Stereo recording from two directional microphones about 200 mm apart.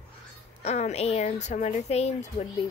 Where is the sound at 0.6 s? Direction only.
35° left (ahead or behind).